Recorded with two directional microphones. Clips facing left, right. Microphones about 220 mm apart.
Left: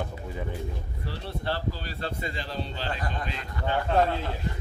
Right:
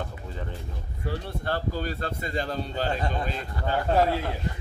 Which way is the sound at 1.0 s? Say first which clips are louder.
Right 2 dB; 50° right (ahead or behind).